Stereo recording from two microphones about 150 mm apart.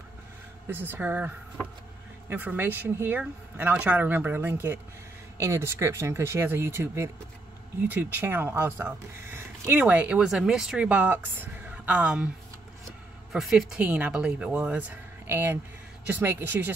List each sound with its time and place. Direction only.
0.7 s speech: 15° right (ahead or behind)
13.3 s speech: centre (ahead or behind)